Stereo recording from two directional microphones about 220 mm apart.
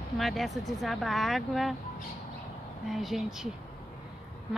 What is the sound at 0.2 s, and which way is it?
Speech, centre (ahead or behind).